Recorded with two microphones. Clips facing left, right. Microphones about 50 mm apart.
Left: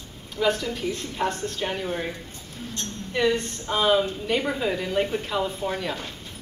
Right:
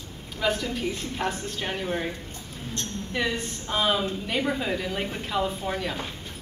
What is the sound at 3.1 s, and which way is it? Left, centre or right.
A woman's voice, centre.